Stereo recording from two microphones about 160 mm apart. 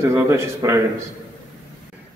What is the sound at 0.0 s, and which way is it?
Speech, 15° right (ahead or behind).